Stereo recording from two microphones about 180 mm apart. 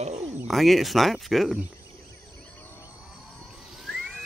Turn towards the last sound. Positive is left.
turn(degrees=0)  # may be behind; listen again after turning